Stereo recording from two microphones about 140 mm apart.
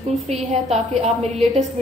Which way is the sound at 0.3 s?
50° right (ahead or behind).